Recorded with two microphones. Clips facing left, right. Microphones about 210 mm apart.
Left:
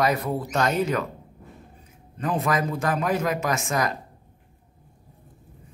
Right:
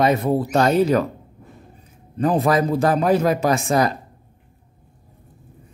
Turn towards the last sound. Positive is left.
turn(degrees=-35)  # may be behind; listen again after turning